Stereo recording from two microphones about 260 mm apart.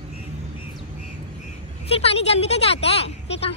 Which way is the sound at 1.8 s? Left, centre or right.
Left.